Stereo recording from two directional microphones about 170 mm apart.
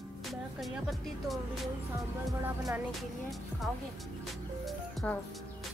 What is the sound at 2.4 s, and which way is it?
Speech, 10° right (ahead or behind).